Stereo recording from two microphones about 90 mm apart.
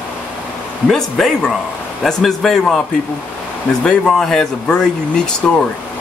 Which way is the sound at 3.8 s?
5° left (ahead or behind).